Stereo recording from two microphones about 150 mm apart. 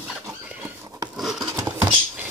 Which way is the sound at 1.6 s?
20° right (ahead or behind).